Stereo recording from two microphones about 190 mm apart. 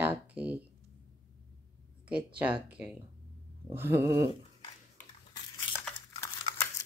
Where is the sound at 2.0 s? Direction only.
5° right (ahead or behind).